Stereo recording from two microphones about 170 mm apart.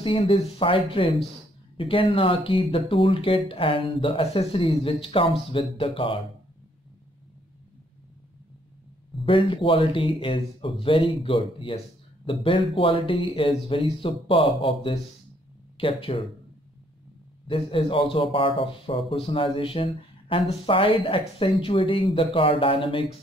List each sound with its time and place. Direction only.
0.0 s speech: 30° left (ahead or behind)
9.2 s speech: 30° left (ahead or behind)
17.5 s speech: 30° left (ahead or behind)